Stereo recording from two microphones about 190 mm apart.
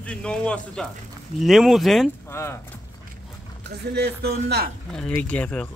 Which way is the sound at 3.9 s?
60° right (ahead or behind).